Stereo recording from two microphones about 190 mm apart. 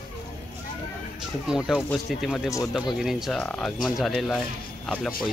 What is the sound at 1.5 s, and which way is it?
Speech, 5° right (ahead or behind).